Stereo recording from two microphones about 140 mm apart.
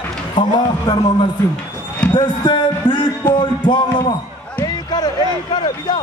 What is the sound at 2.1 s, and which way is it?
A man's voice, 35° left (ahead or behind).